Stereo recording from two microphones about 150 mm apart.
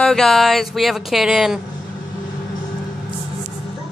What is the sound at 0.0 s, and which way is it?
Speech, 5° left (ahead or behind).